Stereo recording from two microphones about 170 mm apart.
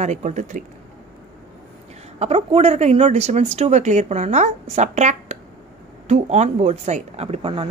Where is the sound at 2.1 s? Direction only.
35° right (ahead or behind).